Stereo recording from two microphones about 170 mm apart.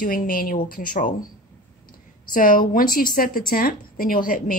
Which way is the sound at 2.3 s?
55° left (ahead or behind).